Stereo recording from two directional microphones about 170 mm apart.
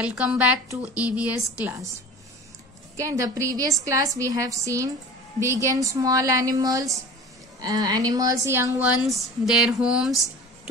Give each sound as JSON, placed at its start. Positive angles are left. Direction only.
{"t": 0.0, "sound": "a woman's voice", "side_deg": -10}
{"t": 3.0, "sound": "a woman's voice", "side_deg": -20}
{"t": 9.0, "sound": "speech", "side_deg": 0}